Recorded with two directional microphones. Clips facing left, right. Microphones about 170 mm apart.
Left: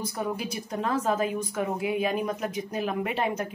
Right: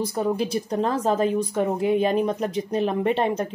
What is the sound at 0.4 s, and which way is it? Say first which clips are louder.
Speech: right 8 dB; 35° right (ahead or behind).